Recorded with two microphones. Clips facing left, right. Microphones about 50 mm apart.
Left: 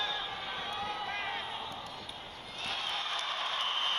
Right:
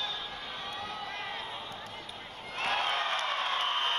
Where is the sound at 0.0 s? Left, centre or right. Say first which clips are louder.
Left 2 dB; left.